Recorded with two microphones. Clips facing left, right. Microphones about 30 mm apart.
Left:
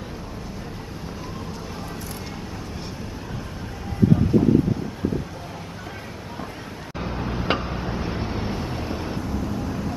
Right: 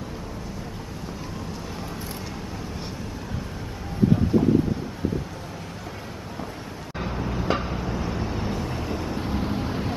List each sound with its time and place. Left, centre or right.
7.2 s a sound: left
8.6 s vehicle: centre
9.2 s vehicle: right